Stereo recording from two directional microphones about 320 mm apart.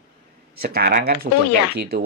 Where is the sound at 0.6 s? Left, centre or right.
Right.